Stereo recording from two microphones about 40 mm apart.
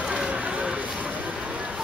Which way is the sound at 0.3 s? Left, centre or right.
Right.